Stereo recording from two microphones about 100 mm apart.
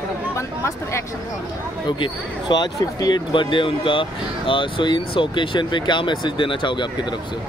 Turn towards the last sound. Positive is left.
turn(degrees=50)  # may be behind; listen again after turning